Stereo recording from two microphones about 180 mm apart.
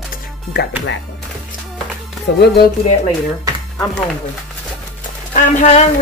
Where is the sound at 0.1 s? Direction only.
60° left (ahead or behind).